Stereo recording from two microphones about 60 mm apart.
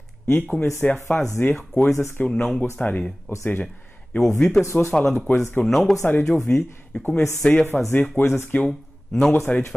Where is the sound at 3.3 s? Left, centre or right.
Left.